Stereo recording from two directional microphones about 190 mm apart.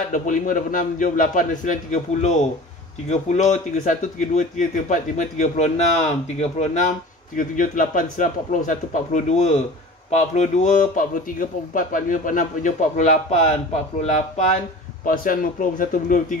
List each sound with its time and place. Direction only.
0.1 s a man's voice: 45° left (ahead or behind)